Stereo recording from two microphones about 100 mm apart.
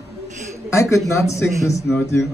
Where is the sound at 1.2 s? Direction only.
30° left (ahead or behind).